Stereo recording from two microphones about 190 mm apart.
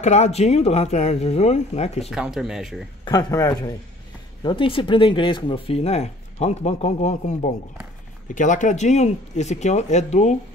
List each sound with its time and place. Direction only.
0.0 s speech: 35° left (ahead or behind)
2.0 s speech: 5° right (ahead or behind)
3.1 s speech: 20° left (ahead or behind); by 10.3 s 40° left (ahead or behind)